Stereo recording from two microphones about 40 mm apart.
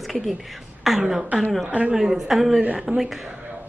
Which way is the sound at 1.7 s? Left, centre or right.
Right.